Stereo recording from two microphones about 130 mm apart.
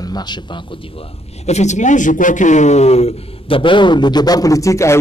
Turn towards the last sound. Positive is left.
turn(degrees=20)  # may be behind; listen again after turning